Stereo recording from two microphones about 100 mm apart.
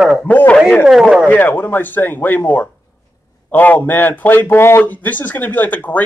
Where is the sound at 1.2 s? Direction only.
20° left (ahead or behind).